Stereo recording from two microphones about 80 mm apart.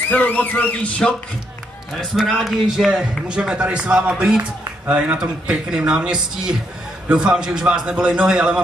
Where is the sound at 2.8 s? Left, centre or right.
Centre.